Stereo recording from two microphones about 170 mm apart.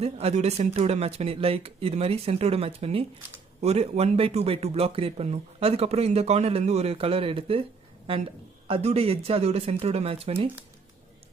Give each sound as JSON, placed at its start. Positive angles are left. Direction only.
{"t": 0.0, "sound": "speech", "side_deg": -40}
{"t": 8.6, "sound": "speech", "side_deg": -35}